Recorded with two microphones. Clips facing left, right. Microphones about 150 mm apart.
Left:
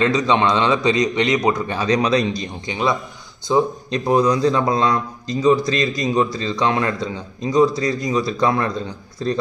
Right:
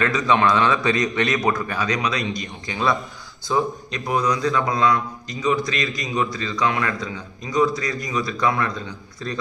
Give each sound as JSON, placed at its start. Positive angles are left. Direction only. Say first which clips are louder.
{"t": 0.0, "sound": "a man's voice", "louder": "left 2 dB", "side_deg": 20}